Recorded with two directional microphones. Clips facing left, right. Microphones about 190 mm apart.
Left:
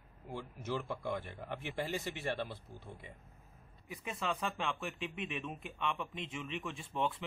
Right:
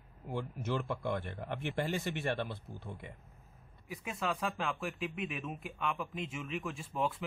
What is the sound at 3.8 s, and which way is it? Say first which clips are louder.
Speech: right 2 dB; centre (ahead or behind).